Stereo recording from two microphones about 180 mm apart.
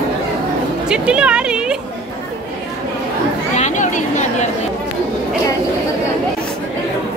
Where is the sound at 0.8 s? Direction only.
5° right (ahead or behind).